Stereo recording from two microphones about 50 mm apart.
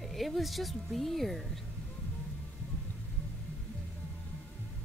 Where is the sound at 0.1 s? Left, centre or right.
Centre.